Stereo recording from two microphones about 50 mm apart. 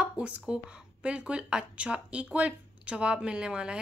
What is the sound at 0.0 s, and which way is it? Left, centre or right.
Speech, centre.